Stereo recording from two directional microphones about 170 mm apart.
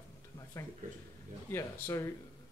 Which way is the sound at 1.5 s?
15° left (ahead or behind).